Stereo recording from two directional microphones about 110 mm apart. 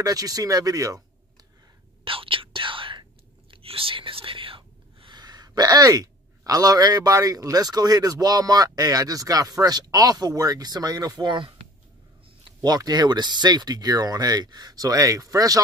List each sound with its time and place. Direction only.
0.0 s speech: 35° right (ahead or behind)
2.0 s speech: 55° right (ahead or behind)
12.6 s speech: 35° right (ahead or behind)